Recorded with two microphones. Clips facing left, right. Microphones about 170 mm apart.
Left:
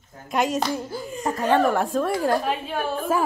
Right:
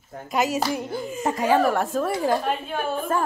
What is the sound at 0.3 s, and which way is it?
A woman's voice, 5° right (ahead or behind).